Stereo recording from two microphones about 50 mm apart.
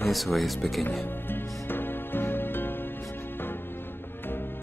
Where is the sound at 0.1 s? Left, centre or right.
Centre.